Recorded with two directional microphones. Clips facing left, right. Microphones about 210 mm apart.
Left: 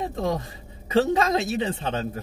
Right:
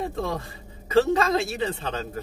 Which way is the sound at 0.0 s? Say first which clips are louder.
Left 2 dB; 15° left (ahead or behind).